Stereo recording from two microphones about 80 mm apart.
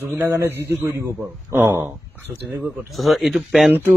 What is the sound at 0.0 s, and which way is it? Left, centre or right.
A man's voice, right.